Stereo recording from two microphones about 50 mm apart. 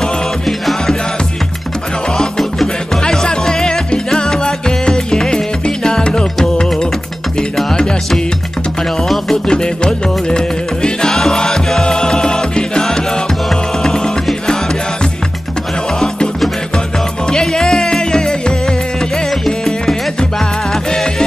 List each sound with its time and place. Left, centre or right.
0.0 s music: centre
2.0 s music: centre
9.0 s music: centre
17.3 s music: centre